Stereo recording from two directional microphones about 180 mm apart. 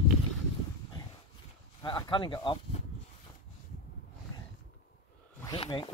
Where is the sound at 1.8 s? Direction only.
25° left (ahead or behind).